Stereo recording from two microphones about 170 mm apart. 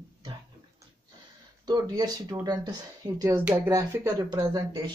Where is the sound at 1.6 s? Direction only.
25° right (ahead or behind).